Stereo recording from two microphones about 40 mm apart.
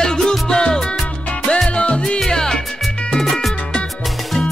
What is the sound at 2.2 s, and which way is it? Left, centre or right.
Music, centre.